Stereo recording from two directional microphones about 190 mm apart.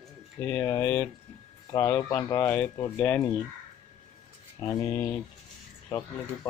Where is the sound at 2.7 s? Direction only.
20° left (ahead or behind).